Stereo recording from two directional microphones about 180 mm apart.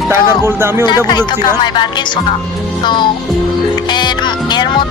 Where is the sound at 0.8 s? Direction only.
25° left (ahead or behind).